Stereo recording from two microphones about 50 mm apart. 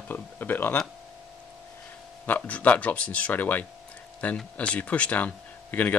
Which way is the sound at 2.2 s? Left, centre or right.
Left.